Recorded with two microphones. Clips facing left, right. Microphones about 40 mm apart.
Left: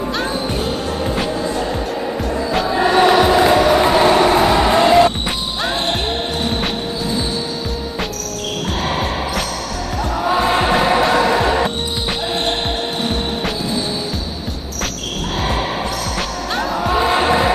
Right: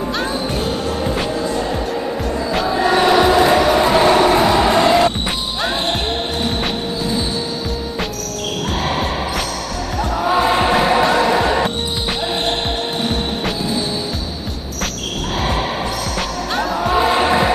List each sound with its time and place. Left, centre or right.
2.5 s music: centre
10.2 s music: centre
16.2 s music: centre